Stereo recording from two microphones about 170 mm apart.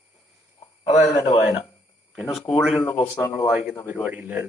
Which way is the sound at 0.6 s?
40° left (ahead or behind).